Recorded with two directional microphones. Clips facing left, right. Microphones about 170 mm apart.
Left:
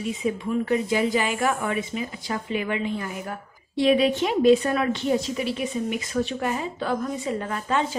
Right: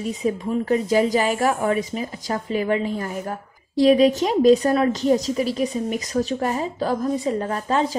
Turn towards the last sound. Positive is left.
turn(degrees=-35)  # may be behind; listen again after turning